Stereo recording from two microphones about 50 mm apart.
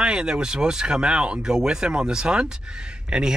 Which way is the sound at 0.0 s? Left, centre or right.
Centre.